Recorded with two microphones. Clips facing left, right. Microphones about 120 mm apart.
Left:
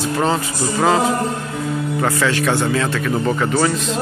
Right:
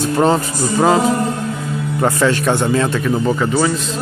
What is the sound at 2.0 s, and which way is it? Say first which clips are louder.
Speech: right 5 dB; 20° right (ahead or behind).